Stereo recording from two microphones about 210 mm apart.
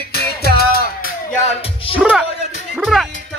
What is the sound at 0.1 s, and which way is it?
Music, 50° left (ahead or behind).